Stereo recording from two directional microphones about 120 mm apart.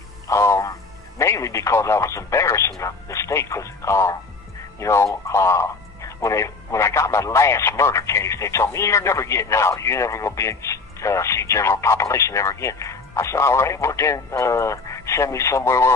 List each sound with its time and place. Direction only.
0.3 s speech: 25° left (ahead or behind)